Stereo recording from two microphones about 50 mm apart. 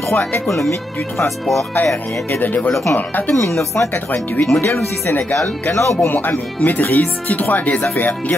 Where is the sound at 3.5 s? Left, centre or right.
Left.